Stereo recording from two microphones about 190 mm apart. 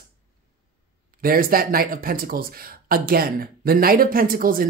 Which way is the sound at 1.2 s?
50° right (ahead or behind).